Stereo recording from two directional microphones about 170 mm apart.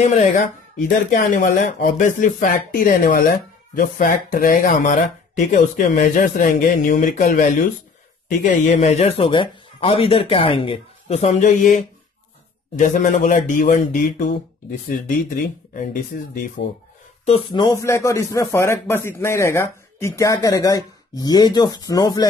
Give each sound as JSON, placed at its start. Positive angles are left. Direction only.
{"t": 0.0, "sound": "speech", "side_deg": 40}
{"t": 17.5, "sound": "a man's voice", "side_deg": 25}